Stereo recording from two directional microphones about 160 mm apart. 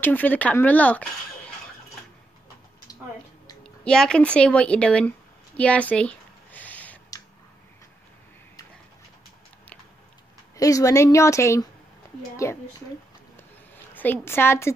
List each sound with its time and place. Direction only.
0.0 s speech: 10° left (ahead or behind)
3.6 s speech: 5° left (ahead or behind)
5.6 s a sound: 10° left (ahead or behind)
10.5 s a woman's voice: 20° left (ahead or behind)
13.9 s speech: 10° left (ahead or behind)